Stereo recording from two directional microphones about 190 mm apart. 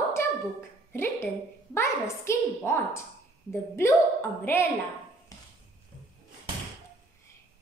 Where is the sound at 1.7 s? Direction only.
15° left (ahead or behind).